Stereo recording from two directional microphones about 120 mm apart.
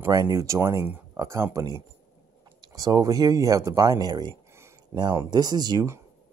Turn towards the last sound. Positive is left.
turn(degrees=-35)  # may be behind; listen again after turning